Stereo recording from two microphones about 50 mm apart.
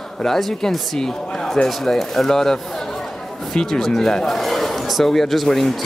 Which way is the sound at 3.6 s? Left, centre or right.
Centre.